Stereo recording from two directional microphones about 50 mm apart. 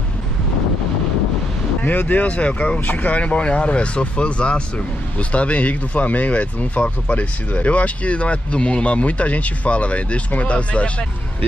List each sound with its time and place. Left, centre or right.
1.8 s speech: left
2.8 s speech: left